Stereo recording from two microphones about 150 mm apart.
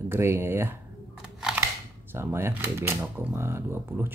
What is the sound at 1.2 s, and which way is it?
Camera, 5° right (ahead or behind).